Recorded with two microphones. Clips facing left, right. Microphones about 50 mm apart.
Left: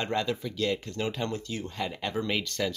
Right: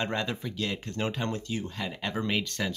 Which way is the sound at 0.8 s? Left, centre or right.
Right.